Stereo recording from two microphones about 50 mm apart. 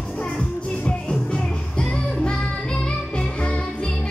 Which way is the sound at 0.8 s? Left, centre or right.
Centre.